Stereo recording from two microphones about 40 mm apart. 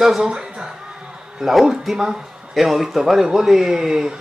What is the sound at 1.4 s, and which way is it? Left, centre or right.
A man's voice, centre.